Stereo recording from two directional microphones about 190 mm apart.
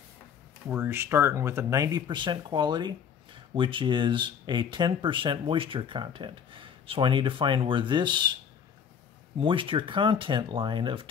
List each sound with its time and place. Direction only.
0.7 s speech: 10° right (ahead or behind)
9.4 s speech: 25° right (ahead or behind)